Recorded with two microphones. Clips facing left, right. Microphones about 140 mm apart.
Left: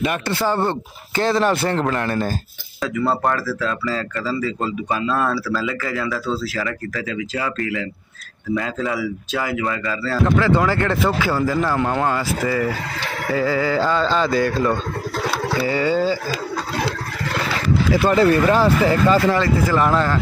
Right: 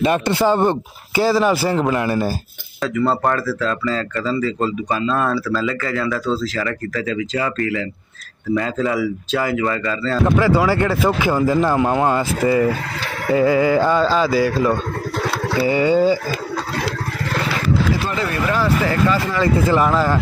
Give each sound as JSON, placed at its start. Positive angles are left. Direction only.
{"t": 0.0, "sound": "speech", "side_deg": -25}
{"t": 1.2, "sound": "speech", "side_deg": -5}
{"t": 10.2, "sound": "speech", "side_deg": -15}
{"t": 18.1, "sound": "speech", "side_deg": 30}
{"t": 19.8, "sound": "speech", "side_deg": -5}